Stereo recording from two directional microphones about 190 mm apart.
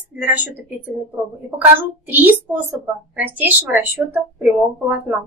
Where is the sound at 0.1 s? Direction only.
10° right (ahead or behind).